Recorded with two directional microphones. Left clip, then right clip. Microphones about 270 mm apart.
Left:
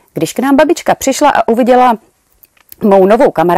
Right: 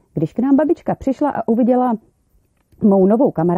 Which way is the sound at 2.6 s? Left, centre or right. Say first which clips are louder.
Left 6 dB; centre.